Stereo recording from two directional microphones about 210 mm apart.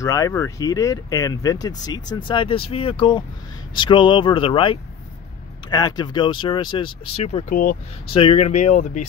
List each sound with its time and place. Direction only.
0.0 s speech: 15° left (ahead or behind); by 7.7 s 40° left (ahead or behind)
8.1 s speech: 25° left (ahead or behind)